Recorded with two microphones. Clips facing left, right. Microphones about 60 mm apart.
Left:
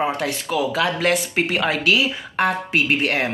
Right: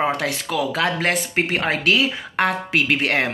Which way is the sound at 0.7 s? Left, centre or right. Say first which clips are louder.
Left 2 dB; right.